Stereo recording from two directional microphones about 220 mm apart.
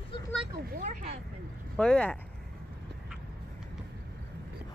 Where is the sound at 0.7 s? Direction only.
35° right (ahead or behind).